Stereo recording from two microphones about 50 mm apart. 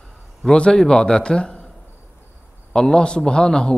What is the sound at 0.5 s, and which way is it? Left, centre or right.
A man's voice, centre.